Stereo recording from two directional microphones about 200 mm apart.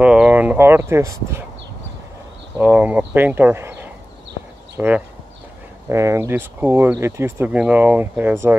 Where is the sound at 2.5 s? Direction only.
10° right (ahead or behind).